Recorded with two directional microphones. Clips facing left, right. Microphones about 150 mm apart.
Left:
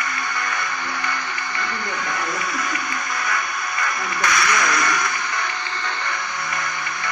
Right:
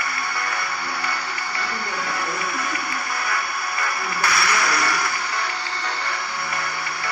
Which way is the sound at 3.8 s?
30° right (ahead or behind).